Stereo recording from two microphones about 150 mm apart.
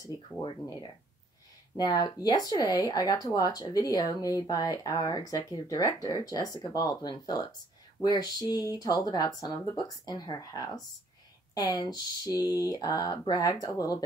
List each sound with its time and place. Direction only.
0.0 s speech: 25° left (ahead or behind)
1.9 s speech: 25° left (ahead or behind)